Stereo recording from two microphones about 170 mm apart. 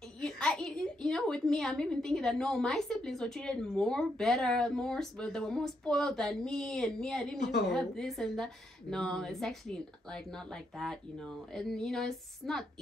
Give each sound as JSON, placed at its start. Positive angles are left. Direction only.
{"t": 0.2, "sound": "a woman's voice", "side_deg": 5}